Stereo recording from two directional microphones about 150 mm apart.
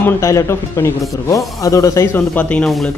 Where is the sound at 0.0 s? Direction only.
20° left (ahead or behind).